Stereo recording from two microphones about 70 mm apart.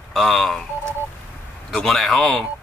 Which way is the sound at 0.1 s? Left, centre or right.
Centre.